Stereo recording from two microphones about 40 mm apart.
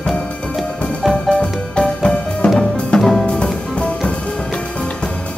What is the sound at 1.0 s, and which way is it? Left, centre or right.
Music, centre.